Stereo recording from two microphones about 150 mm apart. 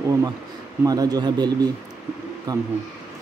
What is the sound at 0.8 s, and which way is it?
Speech, 25° right (ahead or behind).